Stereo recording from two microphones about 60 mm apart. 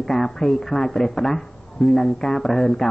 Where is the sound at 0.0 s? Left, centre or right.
Centre.